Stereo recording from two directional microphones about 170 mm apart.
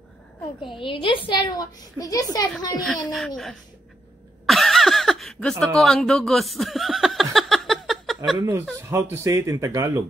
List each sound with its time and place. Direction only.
0.6 s a woman's voice: 30° left (ahead or behind)
2.8 s speech: centre (ahead or behind)
4.5 s a sound: centre (ahead or behind)
8.4 s speech: 15° right (ahead or behind)